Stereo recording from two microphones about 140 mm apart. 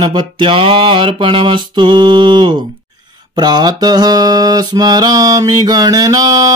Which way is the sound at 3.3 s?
30° right (ahead or behind).